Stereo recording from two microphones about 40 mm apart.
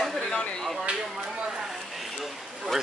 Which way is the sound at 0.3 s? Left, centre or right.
Centre.